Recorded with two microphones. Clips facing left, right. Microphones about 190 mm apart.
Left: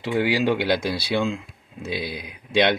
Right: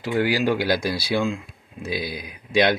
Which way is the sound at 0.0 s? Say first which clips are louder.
Even; centre (ahead or behind).